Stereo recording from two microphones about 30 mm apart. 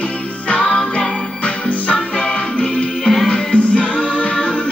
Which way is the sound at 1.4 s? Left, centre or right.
Left.